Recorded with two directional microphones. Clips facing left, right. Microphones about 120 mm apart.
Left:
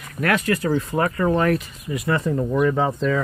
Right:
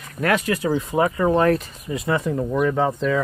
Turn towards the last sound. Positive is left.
turn(degrees=-5)  # may be behind; listen again after turning